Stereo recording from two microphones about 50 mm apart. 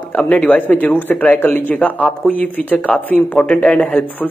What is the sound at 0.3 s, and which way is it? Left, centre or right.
Speech, left.